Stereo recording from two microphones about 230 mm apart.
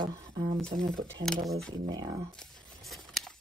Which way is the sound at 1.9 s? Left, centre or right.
Centre.